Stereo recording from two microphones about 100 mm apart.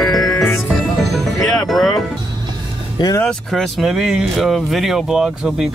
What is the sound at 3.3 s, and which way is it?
Speech, 5° left (ahead or behind).